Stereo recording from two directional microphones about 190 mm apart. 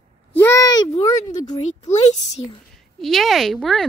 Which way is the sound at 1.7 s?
35° left (ahead or behind).